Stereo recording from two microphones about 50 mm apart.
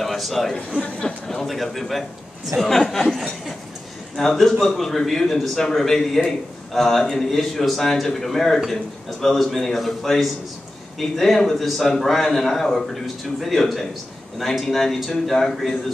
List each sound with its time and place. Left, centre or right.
0.0 s a man's voice: centre